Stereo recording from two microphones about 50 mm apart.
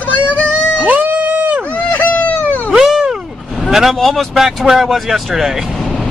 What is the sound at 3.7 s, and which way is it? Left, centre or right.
Vehicle, centre.